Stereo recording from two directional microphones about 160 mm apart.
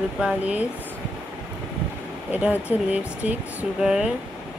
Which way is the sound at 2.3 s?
10° right (ahead or behind).